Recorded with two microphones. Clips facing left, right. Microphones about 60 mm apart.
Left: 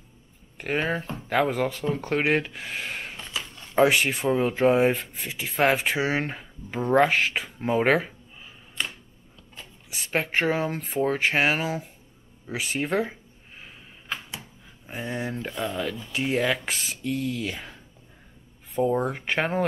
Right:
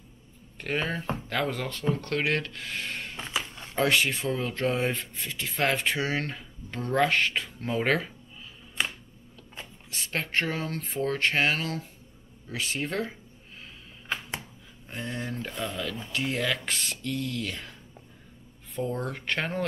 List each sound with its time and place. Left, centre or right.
0.6 s speech: centre
3.2 s a sound: right
3.7 s speech: centre
9.8 s speech: centre
14.9 s speech: centre
18.8 s speech: centre